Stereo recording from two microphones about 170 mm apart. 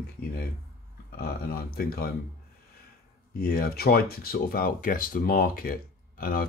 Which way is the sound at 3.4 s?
60° left (ahead or behind).